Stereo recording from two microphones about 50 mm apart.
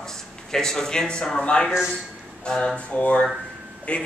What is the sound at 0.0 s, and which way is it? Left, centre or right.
Speech, centre.